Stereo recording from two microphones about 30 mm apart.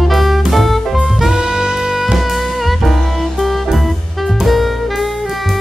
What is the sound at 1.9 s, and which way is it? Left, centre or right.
Music, centre.